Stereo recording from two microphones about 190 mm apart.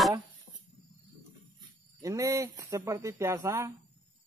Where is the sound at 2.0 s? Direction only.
15° right (ahead or behind).